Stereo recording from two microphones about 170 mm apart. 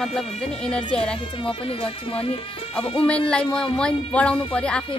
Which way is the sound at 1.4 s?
35° left (ahead or behind).